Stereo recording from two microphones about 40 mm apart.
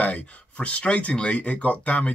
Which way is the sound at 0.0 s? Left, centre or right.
Left.